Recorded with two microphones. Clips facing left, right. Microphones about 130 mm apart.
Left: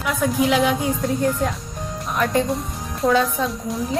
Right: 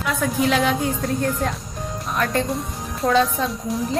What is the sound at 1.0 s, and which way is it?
A woman's voice, 5° left (ahead or behind).